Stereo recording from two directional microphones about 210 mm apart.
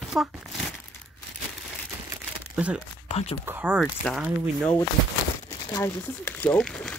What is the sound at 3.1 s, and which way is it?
Speech, 30° left (ahead or behind).